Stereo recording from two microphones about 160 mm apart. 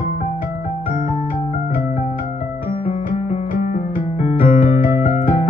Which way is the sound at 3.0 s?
50° left (ahead or behind).